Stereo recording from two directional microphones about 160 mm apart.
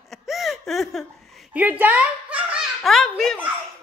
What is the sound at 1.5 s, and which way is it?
Speech, 10° right (ahead or behind).